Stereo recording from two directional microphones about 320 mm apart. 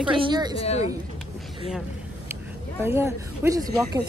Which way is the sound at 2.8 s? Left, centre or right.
Centre.